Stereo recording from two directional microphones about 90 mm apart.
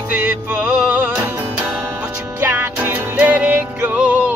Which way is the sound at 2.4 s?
25° right (ahead or behind).